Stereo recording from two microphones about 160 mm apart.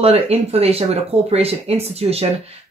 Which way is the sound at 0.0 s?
40° right (ahead or behind).